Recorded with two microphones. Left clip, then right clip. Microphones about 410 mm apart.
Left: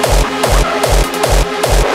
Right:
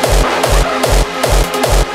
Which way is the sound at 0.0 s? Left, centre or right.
Centre.